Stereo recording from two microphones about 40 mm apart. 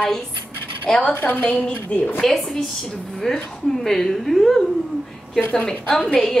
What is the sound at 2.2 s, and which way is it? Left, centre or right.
Speech, centre.